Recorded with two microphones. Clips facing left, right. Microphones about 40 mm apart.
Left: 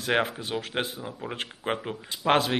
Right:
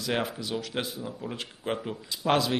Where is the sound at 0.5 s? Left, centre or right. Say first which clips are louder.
Left 2 dB; left.